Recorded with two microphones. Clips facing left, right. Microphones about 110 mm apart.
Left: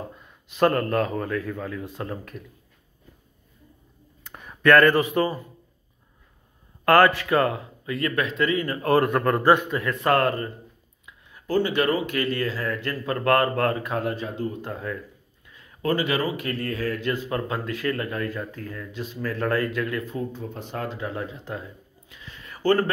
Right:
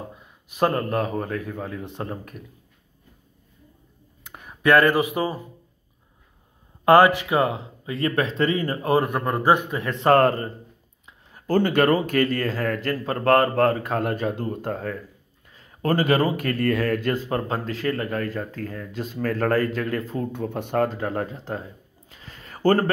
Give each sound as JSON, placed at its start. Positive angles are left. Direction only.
{"t": 0.1, "sound": "a sound", "side_deg": -20}
{"t": 1.1, "sound": "speech", "side_deg": -25}
{"t": 4.2, "sound": "speech", "side_deg": -5}
{"t": 6.8, "sound": "speech", "side_deg": -15}
{"t": 8.8, "sound": "a man's voice", "side_deg": -15}
{"t": 9.8, "sound": "speech", "side_deg": -30}
{"t": 13.0, "sound": "speech", "side_deg": -35}
{"t": 14.0, "sound": "speech", "side_deg": -55}
{"t": 17.0, "sound": "speech", "side_deg": -40}
{"t": 20.3, "sound": "speech", "side_deg": -60}
{"t": 22.1, "sound": "a sound", "side_deg": -35}